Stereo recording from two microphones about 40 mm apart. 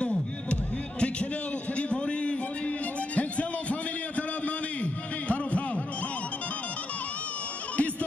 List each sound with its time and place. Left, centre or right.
0.0 s music: left
1.8 s a sound: left
3.2 s music: left